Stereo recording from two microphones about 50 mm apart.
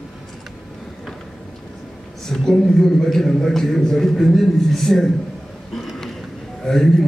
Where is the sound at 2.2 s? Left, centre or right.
Centre.